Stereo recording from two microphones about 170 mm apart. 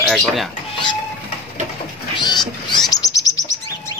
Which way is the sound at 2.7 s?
25° left (ahead or behind).